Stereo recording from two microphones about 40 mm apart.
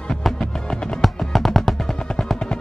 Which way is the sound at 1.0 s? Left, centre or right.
Centre.